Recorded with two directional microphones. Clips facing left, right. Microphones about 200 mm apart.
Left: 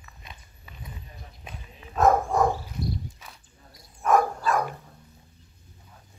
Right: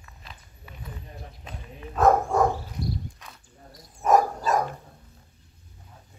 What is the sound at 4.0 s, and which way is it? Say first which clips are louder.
Dog: right 1 dB; 40° right (ahead or behind).